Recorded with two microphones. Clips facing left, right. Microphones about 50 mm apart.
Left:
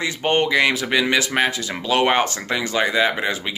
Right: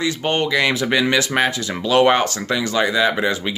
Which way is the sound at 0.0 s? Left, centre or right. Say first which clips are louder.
Even; centre.